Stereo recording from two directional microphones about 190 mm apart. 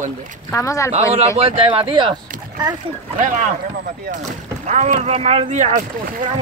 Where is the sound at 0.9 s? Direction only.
35° right (ahead or behind).